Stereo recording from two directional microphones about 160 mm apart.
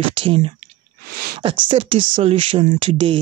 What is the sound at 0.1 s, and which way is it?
Speech, 35° right (ahead or behind).